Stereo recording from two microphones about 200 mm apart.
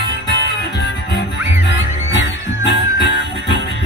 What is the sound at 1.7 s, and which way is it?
Music, 60° left (ahead or behind).